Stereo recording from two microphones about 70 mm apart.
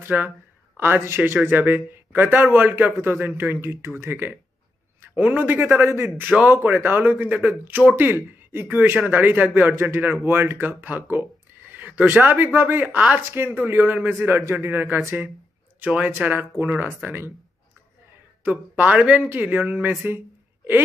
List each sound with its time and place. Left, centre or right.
0.0 s a man's voice: right
6.1 s speech: right
18.4 s speech: right